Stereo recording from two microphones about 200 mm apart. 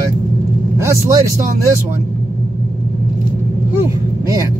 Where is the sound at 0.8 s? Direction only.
15° right (ahead or behind).